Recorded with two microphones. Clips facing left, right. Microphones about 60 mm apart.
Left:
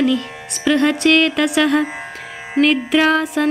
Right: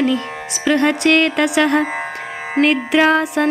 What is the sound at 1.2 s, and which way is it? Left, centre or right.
Music, centre.